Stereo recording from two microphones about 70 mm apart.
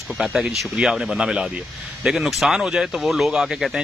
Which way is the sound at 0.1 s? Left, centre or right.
Centre.